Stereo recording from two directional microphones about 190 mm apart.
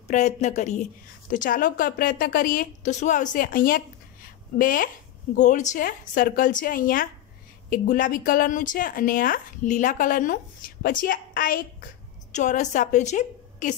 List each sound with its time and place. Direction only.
0.1 s a woman's voice: 40° left (ahead or behind)